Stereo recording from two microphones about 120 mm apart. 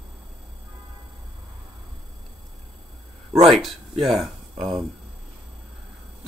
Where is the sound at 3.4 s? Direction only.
Centre (ahead or behind).